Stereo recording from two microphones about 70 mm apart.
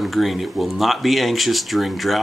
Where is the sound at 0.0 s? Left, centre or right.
Centre.